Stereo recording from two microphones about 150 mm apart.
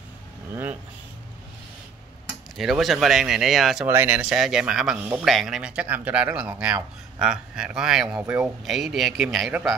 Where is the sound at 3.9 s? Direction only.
15° right (ahead or behind).